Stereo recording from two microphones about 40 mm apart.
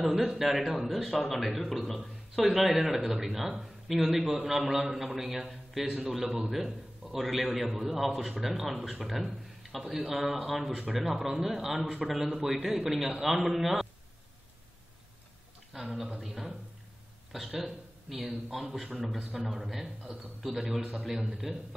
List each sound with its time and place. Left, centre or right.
0.3 s a man's voice: centre
11.0 s a man's voice: centre
15.7 s a man's voice: centre